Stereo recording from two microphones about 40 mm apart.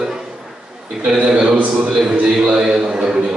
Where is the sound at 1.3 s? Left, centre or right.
Right.